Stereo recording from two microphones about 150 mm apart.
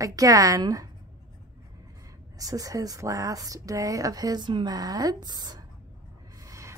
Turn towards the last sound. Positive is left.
turn(degrees=-20)  # may be behind; listen again after turning